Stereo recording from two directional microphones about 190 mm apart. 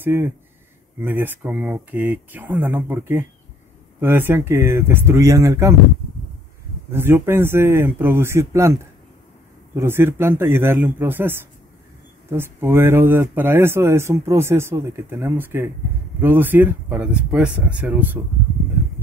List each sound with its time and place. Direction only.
0.0 s speech: 10° right (ahead or behind)
6.9 s speech: 10° right (ahead or behind)
9.8 s speech: 10° right (ahead or behind)